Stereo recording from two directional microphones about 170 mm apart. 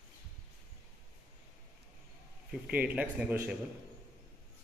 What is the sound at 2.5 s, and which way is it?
Speech, 10° right (ahead or behind).